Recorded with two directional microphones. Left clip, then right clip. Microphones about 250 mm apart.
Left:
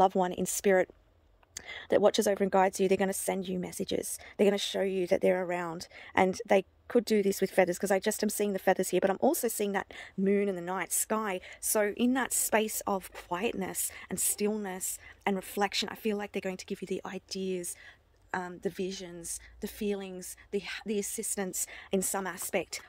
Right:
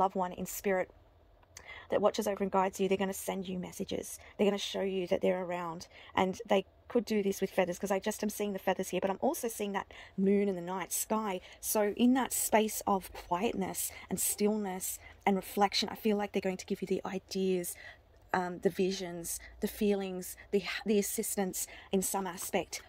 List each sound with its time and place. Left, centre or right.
0.0 s a woman's voice: left; by 22.8 s centre